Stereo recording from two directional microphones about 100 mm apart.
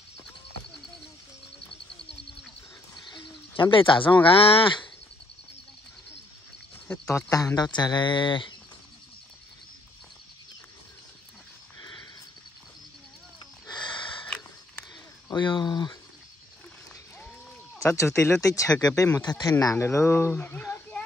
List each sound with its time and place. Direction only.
3.1 s speech: 45° left (ahead or behind); by 4.7 s 70° left (ahead or behind)
7.1 s speech: 30° left (ahead or behind); by 8.5 s 55° left (ahead or behind)
11.8 s horse: 45° left (ahead or behind)
15.3 s speech: 50° left (ahead or behind)
17.8 s speech: 30° left (ahead or behind); by 19.5 s 45° left (ahead or behind)
19.6 s speech: 30° left (ahead or behind)